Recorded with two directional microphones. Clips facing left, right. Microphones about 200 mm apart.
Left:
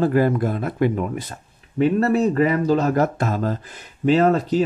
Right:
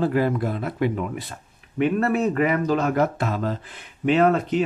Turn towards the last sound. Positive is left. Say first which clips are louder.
# left 2 dB
turn(degrees=35)  # may be behind; listen again after turning